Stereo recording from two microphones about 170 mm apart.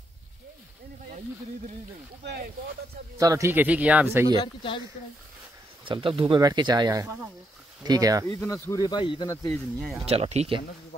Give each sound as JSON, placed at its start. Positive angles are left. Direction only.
{"t": 2.2, "sound": "speech", "side_deg": -70}
{"t": 3.2, "sound": "a man's voice", "side_deg": -20}
{"t": 4.4, "sound": "speech", "side_deg": 30}
{"t": 5.9, "sound": "speech", "side_deg": -30}
{"t": 8.5, "sound": "speech", "side_deg": 15}
{"t": 8.8, "sound": "speech", "side_deg": 30}
{"t": 9.5, "sound": "speech", "side_deg": 0}
{"t": 10.0, "sound": "speech", "side_deg": -35}